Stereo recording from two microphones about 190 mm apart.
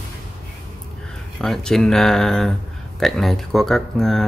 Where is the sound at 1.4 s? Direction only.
Centre (ahead or behind).